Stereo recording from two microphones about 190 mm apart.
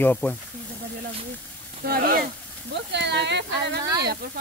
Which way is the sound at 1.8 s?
50° right (ahead or behind).